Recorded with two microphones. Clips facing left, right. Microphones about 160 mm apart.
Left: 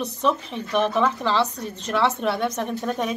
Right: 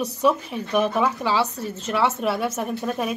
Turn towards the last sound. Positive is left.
turn(degrees=-5)  # may be behind; listen again after turning